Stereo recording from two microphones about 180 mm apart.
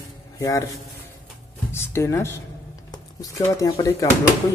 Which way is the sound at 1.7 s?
15° left (ahead or behind).